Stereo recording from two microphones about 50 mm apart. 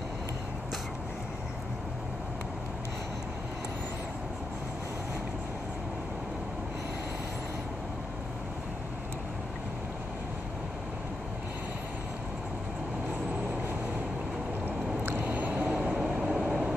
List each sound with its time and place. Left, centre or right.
15.0 s vehicle: right
15.8 s train: right
16.2 s vehicle: right